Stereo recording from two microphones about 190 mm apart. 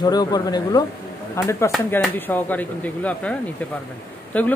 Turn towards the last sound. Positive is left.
turn(degrees=10)  # may be behind; listen again after turning